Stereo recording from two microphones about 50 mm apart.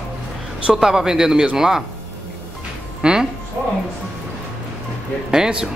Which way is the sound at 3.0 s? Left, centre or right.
Centre.